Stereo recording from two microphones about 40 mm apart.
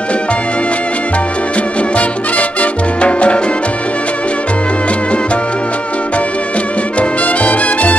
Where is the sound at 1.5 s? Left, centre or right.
Left.